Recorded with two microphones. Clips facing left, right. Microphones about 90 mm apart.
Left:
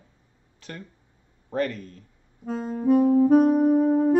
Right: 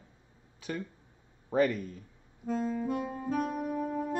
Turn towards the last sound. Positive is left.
turn(degrees=55)  # may be behind; listen again after turning